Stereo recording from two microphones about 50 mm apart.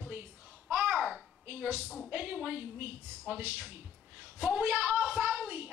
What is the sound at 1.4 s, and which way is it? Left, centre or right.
Speech, right.